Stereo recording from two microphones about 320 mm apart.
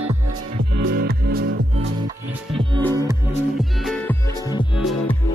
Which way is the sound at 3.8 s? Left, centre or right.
Centre.